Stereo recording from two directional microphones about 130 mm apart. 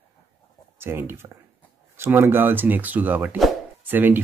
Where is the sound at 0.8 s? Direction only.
20° right (ahead or behind).